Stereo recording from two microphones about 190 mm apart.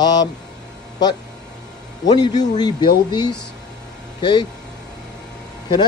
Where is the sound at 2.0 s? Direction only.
20° left (ahead or behind).